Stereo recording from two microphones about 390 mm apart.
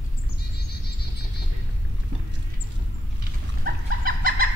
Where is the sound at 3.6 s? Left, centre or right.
Right.